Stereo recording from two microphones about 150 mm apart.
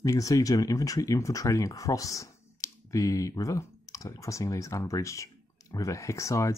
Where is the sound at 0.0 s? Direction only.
20° left (ahead or behind).